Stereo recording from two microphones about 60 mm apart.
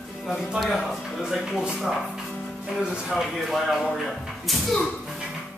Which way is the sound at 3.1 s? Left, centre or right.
Centre.